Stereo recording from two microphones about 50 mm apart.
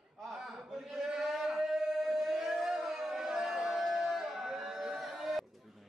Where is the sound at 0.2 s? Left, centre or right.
Centre.